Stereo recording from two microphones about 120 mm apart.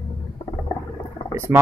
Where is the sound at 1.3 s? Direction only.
20° right (ahead or behind).